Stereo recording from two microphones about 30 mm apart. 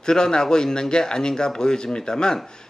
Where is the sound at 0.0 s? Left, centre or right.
Left.